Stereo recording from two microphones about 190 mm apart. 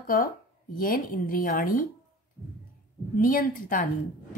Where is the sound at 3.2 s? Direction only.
45° left (ahead or behind).